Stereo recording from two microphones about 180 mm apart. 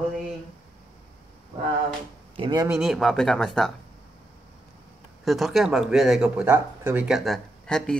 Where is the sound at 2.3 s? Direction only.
25° right (ahead or behind).